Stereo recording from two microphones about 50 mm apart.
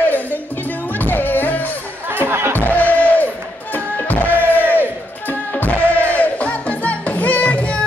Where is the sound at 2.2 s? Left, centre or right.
Right.